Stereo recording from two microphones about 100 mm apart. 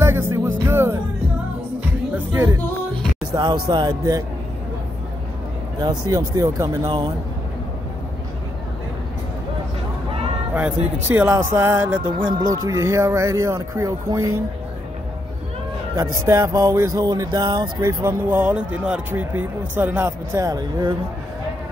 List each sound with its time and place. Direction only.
0.0 s music: 25° right (ahead or behind)
2.3 s speech: 30° right (ahead or behind)
3.3 s speech: 45° right (ahead or behind)
5.8 s speech: 40° right (ahead or behind)
10.5 s speech: 15° right (ahead or behind)
12.4 s speech: 35° right (ahead or behind)
15.9 s speech: 30° right (ahead or behind)
17.7 s speech: 25° right (ahead or behind)
20.3 s speech: 40° right (ahead or behind)